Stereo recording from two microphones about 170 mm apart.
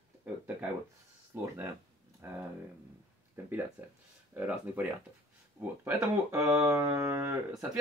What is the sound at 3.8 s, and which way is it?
Speech, 10° right (ahead or behind).